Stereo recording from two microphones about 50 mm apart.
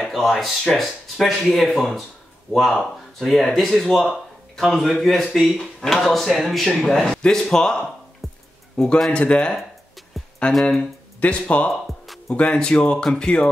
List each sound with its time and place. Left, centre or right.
0.1 s speech: centre
7.2 s speech: centre
8.2 s music: centre
8.7 s a man's voice: centre
10.1 s music: centre
10.5 s speech: centre
11.1 s speech: left; by 13.3 s centre